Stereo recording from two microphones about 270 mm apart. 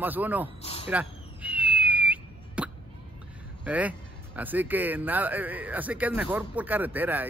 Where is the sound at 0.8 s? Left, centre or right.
Centre.